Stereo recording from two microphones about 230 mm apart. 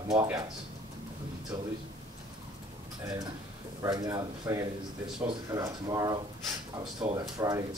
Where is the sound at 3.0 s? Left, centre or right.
Centre.